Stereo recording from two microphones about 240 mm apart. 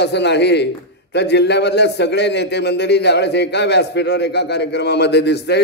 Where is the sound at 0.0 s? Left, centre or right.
Left.